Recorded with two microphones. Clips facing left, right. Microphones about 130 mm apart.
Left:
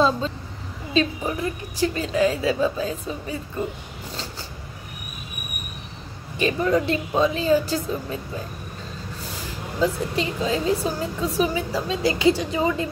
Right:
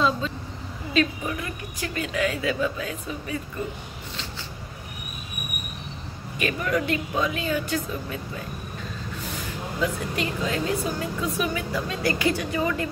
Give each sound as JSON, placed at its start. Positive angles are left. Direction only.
{"t": 0.9, "sound": "a woman's voice", "side_deg": 30}
{"t": 6.3, "sound": "a woman's voice", "side_deg": 30}
{"t": 9.8, "sound": "a woman's voice", "side_deg": 25}